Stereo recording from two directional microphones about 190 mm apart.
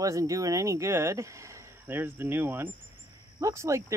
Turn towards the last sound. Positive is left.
turn(degrees=-15)  # may be behind; listen again after turning